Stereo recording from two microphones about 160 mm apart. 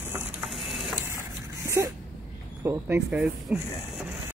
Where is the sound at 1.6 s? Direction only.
15° right (ahead or behind).